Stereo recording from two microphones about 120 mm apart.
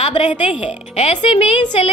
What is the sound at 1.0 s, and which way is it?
Speech, 65° left (ahead or behind).